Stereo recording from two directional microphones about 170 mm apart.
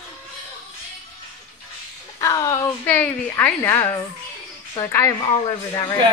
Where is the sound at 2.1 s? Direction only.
20° left (ahead or behind).